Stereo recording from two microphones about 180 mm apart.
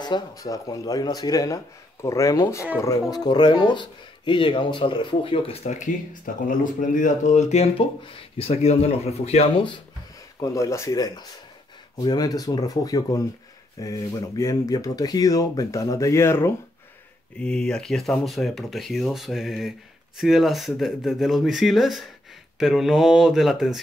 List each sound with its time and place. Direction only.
0.0 s speech: 20° left (ahead or behind)
10.4 s speech: 20° left (ahead or behind); by 23.8 s centre (ahead or behind)